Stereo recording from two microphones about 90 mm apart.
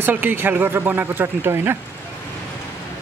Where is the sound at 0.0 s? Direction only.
25° right (ahead or behind).